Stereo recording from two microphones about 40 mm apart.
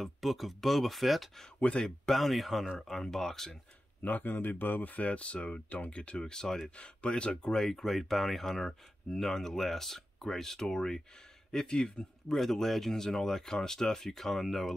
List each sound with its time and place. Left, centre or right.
0.0 s speech: centre
4.0 s speech: left
5.0 s speech: left
6.3 s speech: centre
6.8 s speech: left
12.3 s speech: centre